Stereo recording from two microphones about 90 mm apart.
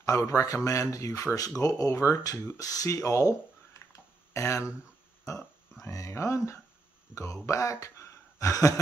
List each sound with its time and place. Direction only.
0.0 s speech: 35° left (ahead or behind)